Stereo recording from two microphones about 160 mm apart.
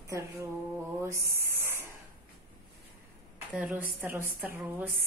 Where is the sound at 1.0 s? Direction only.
15° right (ahead or behind).